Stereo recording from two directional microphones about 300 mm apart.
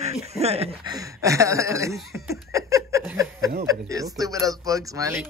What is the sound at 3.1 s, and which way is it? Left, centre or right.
Speech, centre.